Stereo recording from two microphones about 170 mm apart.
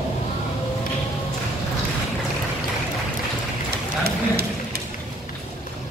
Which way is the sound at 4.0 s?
65° right (ahead or behind).